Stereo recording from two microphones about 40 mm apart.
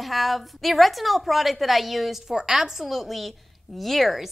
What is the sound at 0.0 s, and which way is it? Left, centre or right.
A woman's voice, centre.